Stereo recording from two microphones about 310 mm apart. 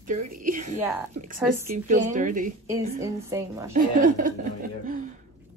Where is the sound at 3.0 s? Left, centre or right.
Centre.